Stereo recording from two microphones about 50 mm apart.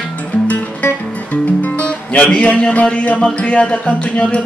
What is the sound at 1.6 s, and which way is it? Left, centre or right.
Music, left.